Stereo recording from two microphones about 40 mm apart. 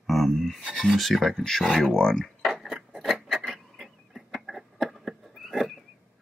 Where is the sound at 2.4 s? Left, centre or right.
Centre.